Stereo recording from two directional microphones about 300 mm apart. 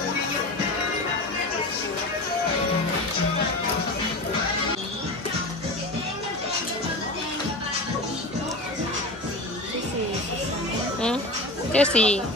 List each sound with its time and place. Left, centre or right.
11.7 s speech: centre